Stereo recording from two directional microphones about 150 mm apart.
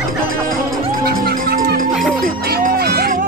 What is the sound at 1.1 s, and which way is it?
Music, 85° right.